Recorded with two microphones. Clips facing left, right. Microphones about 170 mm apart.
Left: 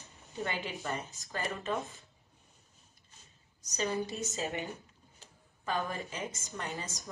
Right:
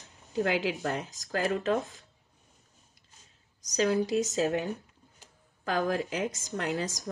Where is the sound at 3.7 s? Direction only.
90° right.